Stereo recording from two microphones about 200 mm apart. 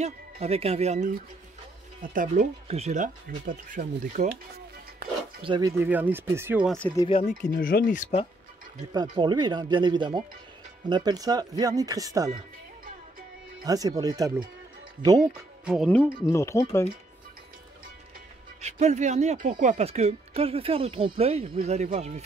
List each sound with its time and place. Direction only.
0.0 s speech: 30° right (ahead or behind)
2.1 s speech: 35° right (ahead or behind)
5.4 s speech: 20° right (ahead or behind); by 6.8 s 5° right (ahead or behind)
7.1 s speech: 30° left (ahead or behind)
7.5 s speech: 45° left (ahead or behind)
8.9 s speech: 20° right (ahead or behind)
13.7 s speech: 20° right (ahead or behind)
15.6 s speech: centre (ahead or behind); by 16.8 s 15° left (ahead or behind)
18.6 s speech: 35° right (ahead or behind)